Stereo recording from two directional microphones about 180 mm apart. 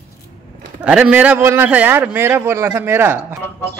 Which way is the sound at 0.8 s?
5° right (ahead or behind).